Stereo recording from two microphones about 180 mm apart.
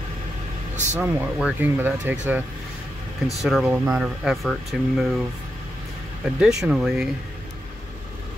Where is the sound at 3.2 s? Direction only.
Centre (ahead or behind).